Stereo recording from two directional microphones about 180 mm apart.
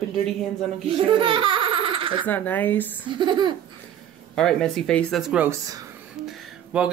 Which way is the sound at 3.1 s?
25° right (ahead or behind).